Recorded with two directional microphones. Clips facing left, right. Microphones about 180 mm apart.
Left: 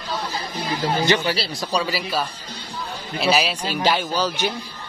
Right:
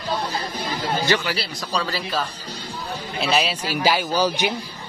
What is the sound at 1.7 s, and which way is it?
A woman's voice, 10° left (ahead or behind).